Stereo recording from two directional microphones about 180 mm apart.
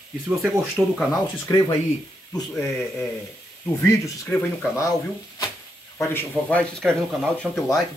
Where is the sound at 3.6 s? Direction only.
15° left (ahead or behind).